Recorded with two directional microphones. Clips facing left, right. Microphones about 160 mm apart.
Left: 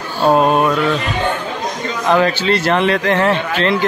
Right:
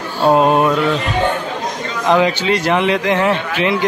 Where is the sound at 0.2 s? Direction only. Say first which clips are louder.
Even; 15° right (ahead or behind).